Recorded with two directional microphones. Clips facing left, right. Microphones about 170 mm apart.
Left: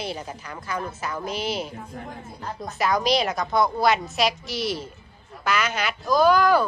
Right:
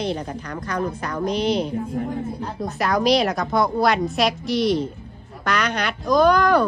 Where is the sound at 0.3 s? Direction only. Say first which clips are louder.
Right 4 dB; 5° left (ahead or behind).